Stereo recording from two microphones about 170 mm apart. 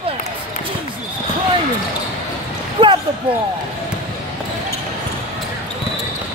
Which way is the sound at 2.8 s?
30° right (ahead or behind).